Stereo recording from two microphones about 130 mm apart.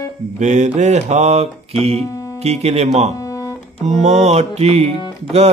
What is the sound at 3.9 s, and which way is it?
Mantra, 60° right (ahead or behind).